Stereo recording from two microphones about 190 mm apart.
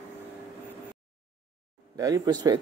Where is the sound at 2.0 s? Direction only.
20° right (ahead or behind).